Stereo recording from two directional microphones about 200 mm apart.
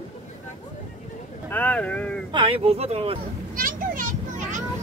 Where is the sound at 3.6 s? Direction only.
40° right (ahead or behind).